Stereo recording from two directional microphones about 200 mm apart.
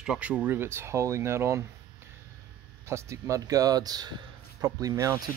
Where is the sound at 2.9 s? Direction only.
15° right (ahead or behind).